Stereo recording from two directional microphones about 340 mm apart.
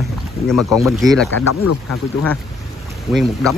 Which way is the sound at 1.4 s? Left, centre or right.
Left.